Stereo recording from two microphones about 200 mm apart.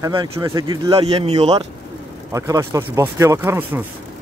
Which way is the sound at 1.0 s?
30° right (ahead or behind).